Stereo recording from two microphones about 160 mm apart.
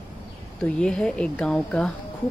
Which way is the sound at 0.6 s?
5° left (ahead or behind).